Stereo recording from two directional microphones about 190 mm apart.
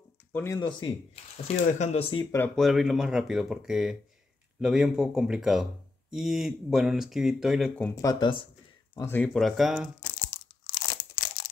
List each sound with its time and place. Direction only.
0.3 s speech: 10° left (ahead or behind)
0.6 s speech: 25° left (ahead or behind)
1.6 s speech: 35° left (ahead or behind)
2.3 s speech: 5° left (ahead or behind)
8.0 s speech: 20° left (ahead or behind)
8.9 s speech: 10° left (ahead or behind)
9.9 s crunch: 20° left (ahead or behind)